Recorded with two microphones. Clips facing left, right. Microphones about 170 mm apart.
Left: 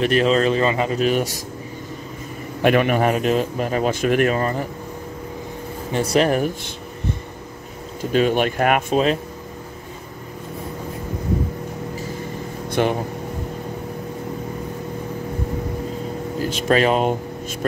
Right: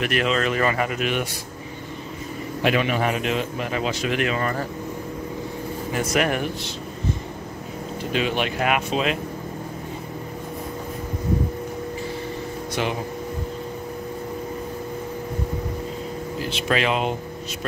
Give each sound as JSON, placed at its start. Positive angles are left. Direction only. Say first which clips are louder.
{"t": 0.0, "sound": "speech", "louder": "left 6 dB", "side_deg": 30}
{"t": 0.9, "sound": "speech", "louder": "left 6 dB", "side_deg": 40}
{"t": 2.6, "sound": "a man's voice", "louder": "left 5 dB", "side_deg": 50}
{"t": 5.9, "sound": "speech", "louder": "left 5 dB", "side_deg": 30}
{"t": 8.0, "sound": "a man's voice", "louder": "left 6 dB", "side_deg": 45}
{"t": 12.8, "sound": "a man's voice", "louder": "left 7 dB", "side_deg": 50}
{"t": 16.3, "sound": "speech", "louder": "left 6 dB", "side_deg": 45}